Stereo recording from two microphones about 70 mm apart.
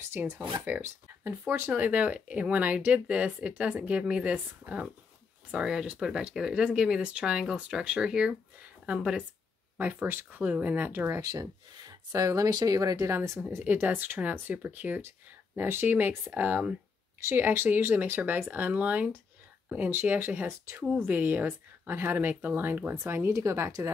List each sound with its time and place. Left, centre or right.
0.1 s speech: right; by 9.2 s centre
9.8 s speech: right
11.1 s speech: right
12.4 s speech: right
13.1 s speech: right
20.8 s speech: right